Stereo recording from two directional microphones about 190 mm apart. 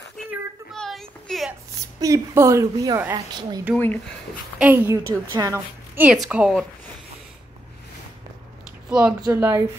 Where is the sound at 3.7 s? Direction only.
10° left (ahead or behind).